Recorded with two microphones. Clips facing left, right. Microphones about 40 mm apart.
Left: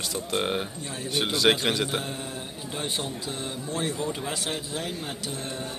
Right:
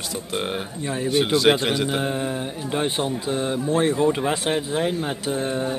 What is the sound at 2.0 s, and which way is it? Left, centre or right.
Speech, right.